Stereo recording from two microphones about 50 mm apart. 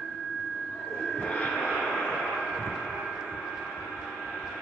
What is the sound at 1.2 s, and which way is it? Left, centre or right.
Vehicle, left.